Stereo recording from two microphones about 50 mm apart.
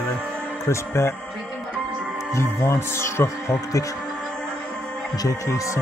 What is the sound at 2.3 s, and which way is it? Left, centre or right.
Speech, left.